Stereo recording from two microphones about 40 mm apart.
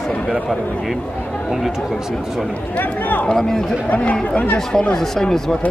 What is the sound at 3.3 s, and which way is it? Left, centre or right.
Speech, centre.